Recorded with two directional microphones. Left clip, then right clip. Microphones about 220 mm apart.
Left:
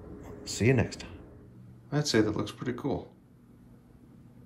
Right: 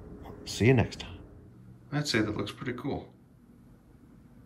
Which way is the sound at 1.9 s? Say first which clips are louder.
Left 3 dB; 10° left (ahead or behind).